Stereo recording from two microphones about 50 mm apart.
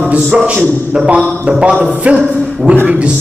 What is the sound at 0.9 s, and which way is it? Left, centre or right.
A man's voice, right.